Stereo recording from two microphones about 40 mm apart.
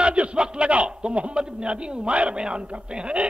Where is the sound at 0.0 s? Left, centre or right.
Right.